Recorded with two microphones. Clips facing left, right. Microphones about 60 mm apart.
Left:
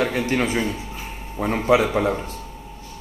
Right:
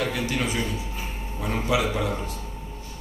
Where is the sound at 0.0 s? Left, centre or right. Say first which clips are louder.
Left 5 dB; left.